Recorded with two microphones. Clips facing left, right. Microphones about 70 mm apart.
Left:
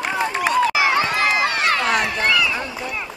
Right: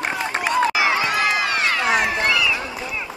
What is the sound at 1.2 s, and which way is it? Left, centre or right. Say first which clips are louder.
Run: left 1 dB; left.